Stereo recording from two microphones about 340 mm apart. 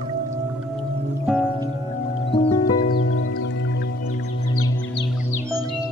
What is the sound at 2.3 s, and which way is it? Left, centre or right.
Music, centre.